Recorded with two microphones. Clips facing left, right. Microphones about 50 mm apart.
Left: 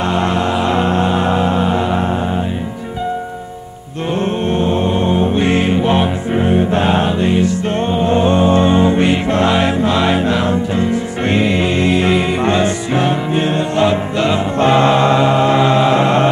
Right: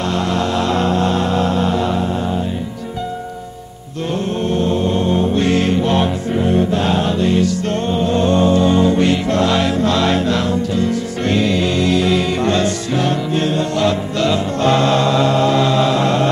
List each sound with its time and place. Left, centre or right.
0.0 s music: left
4.5 s music: left